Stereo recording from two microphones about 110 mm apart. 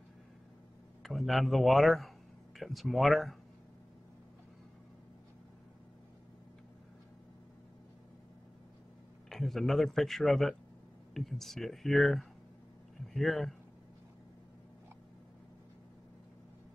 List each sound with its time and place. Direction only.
1.0 s speech: centre (ahead or behind)
9.3 s speech: centre (ahead or behind)